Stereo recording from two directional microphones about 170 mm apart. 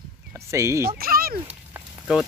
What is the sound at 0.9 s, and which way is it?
Speech, 60° right (ahead or behind).